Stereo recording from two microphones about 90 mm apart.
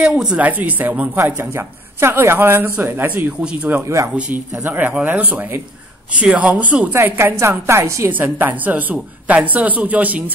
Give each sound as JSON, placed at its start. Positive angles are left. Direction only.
{"t": 0.0, "sound": "a man's voice", "side_deg": -10}
{"t": 0.5, "sound": "a man's voice", "side_deg": -20}
{"t": 6.9, "sound": "a woman's voice", "side_deg": -25}
{"t": 8.2, "sound": "a man's voice", "side_deg": -20}